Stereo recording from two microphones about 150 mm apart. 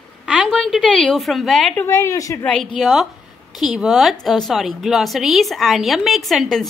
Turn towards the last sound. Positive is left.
turn(degrees=0)  # may be behind; listen again after turning